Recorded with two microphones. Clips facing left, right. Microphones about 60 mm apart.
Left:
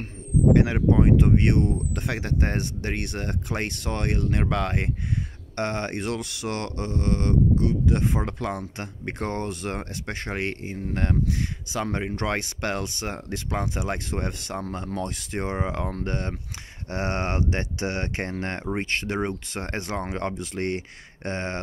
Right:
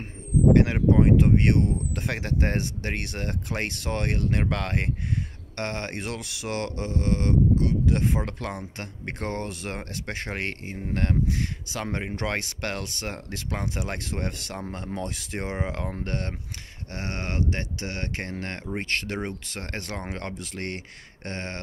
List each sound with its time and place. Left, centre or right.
0.5 s speech: centre
16.9 s speech: left